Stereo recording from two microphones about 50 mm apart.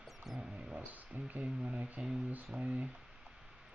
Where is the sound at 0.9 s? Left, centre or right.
Right.